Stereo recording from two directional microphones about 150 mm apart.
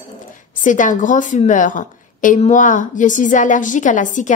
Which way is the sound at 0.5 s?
60° left (ahead or behind).